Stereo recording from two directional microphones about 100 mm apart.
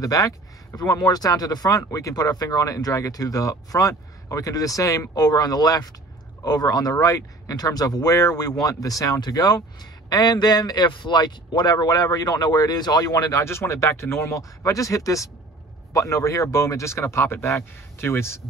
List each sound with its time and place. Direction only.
0.0 s speech: 35° left (ahead or behind)